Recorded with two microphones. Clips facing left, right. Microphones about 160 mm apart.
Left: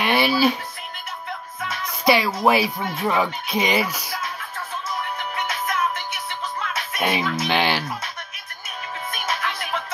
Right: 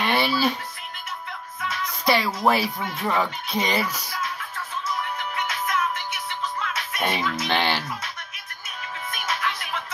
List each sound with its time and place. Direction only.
0.0 s music: 5° left (ahead or behind)
2.0 s speech: 10° left (ahead or behind)
5.3 s music: 55° left (ahead or behind)
7.0 s music: 10° left (ahead or behind)
7.3 s speech: 10° left (ahead or behind)